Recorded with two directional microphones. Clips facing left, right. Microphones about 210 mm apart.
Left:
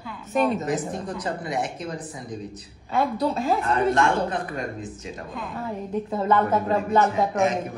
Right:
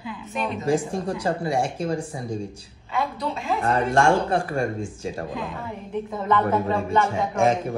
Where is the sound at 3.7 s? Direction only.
30° right (ahead or behind).